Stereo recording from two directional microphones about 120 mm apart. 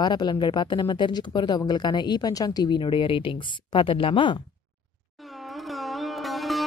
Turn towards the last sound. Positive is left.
turn(degrees=0)  # may be behind; listen again after turning